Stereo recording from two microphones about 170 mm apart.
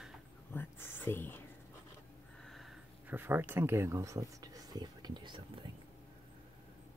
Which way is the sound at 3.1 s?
15° right (ahead or behind).